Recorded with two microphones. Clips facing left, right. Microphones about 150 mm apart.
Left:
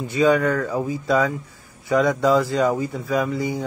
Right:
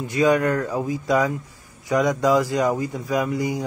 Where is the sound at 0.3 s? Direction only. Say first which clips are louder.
Even; 10° right (ahead or behind).